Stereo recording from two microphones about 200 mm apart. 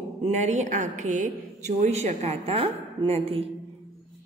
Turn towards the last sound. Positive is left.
turn(degrees=-30)  # may be behind; listen again after turning